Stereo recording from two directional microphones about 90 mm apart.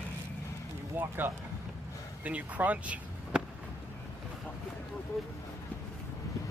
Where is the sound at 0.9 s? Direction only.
25° right (ahead or behind).